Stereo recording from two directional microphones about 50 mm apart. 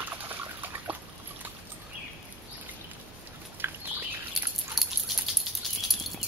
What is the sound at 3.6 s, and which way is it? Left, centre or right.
Bird, right.